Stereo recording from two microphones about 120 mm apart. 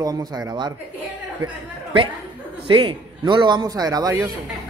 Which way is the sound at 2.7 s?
45° right (ahead or behind).